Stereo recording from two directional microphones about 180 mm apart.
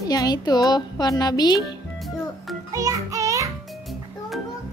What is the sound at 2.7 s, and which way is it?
Music, 20° right (ahead or behind).